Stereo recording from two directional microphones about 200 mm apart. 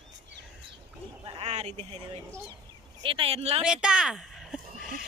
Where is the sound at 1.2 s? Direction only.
25° right (ahead or behind).